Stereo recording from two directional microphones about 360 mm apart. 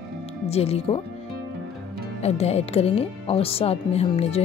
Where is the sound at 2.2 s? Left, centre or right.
Centre.